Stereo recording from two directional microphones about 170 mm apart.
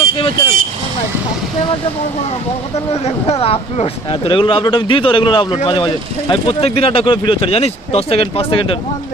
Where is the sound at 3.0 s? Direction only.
40° left (ahead or behind).